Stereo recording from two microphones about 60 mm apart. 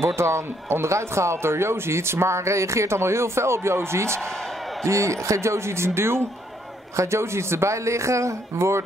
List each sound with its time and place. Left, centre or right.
0.0 s speech: right